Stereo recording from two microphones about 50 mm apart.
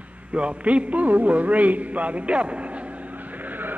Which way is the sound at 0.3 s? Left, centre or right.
Right.